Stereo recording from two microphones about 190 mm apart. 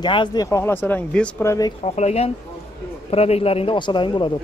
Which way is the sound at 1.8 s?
35° left (ahead or behind).